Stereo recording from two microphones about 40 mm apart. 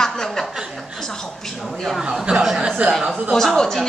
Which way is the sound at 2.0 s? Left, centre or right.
Centre.